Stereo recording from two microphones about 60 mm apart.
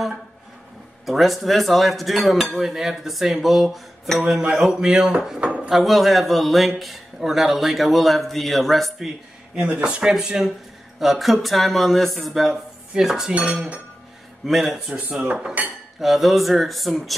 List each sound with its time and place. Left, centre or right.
1.0 s a man's voice: centre
9.6 s a man's voice: right
13.3 s speech: right
14.4 s a man's voice: centre
15.6 s speech: right
16.0 s a man's voice: centre